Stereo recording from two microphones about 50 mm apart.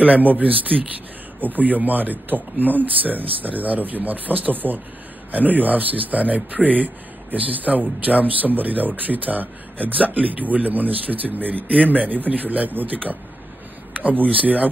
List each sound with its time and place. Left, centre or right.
0.0 s speech: right
14.3 s speech: right